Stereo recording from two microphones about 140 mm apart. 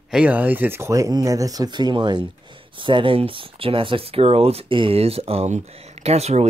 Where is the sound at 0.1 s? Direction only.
10° right (ahead or behind).